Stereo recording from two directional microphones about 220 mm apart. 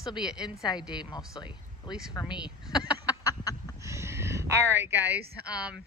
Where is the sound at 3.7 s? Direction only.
15° right (ahead or behind).